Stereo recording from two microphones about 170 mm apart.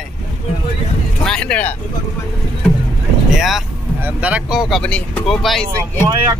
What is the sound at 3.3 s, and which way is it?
Speech, centre (ahead or behind).